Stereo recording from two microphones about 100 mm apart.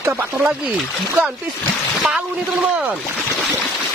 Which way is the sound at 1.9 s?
5° right (ahead or behind).